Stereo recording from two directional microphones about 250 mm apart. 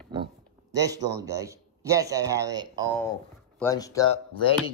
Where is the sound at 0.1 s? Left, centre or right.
Centre.